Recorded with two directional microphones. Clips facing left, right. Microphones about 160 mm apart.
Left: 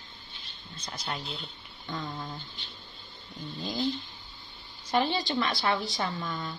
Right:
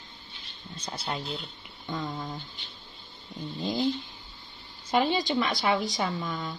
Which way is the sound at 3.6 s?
25° right (ahead or behind).